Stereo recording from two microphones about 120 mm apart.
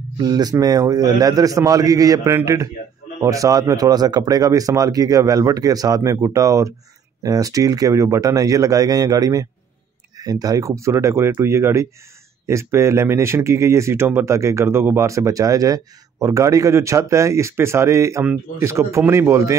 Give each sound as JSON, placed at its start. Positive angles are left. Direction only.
{"t": 0.2, "sound": "speech", "side_deg": -35}